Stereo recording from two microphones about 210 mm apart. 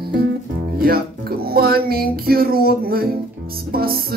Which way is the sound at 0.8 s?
45° right (ahead or behind).